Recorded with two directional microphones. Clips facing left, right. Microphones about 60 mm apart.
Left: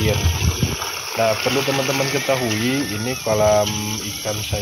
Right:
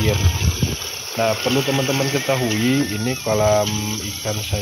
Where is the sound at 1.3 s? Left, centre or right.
Left.